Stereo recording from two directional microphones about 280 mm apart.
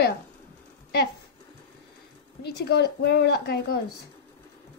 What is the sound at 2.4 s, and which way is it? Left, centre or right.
Speech, left.